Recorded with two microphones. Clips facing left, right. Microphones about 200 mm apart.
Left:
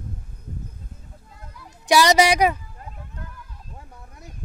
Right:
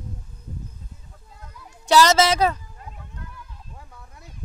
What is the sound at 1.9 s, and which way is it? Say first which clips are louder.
Speech: even; 15° left (ahead or behind).